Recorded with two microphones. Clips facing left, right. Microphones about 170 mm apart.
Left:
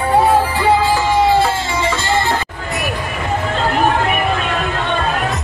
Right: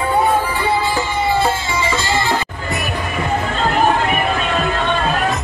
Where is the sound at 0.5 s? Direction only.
90° left; by 2.2 s 60° left (ahead or behind).